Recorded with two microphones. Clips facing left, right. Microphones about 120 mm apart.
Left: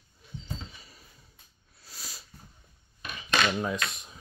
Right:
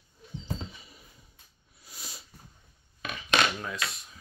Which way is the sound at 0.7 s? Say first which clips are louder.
Right 1 dB; 15° right (ahead or behind).